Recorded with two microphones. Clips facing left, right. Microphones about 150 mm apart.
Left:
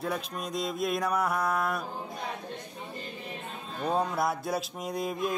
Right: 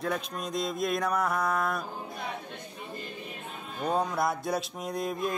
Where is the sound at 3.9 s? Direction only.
5° left (ahead or behind).